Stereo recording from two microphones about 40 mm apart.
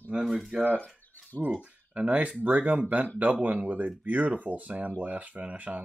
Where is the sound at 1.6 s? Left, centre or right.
Right.